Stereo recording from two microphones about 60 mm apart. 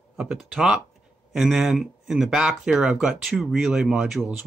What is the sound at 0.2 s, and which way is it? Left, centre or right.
Speech, centre.